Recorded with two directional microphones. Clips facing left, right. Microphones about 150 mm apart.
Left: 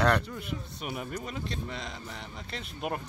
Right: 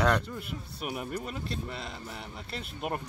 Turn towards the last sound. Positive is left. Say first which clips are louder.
# even
turn(degrees=0)  # may be behind; listen again after turning